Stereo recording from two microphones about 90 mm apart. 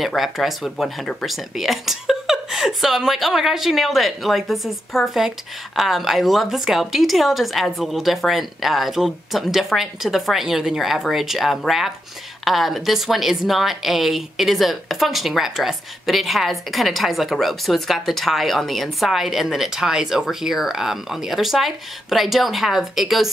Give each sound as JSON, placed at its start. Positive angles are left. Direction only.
{"t": 0.0, "sound": "a woman's voice", "side_deg": 0}